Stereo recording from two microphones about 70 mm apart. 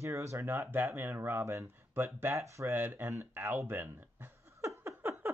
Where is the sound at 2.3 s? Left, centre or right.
Right.